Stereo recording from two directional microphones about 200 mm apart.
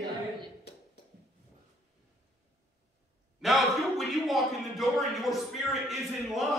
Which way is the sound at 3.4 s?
Centre (ahead or behind).